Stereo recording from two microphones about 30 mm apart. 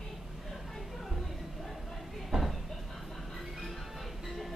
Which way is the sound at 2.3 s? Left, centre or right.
Right.